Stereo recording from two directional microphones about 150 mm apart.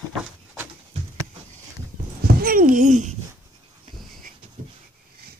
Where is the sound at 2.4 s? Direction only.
70° right (ahead or behind).